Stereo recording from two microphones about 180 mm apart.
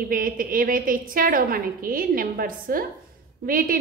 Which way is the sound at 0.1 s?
50° right (ahead or behind).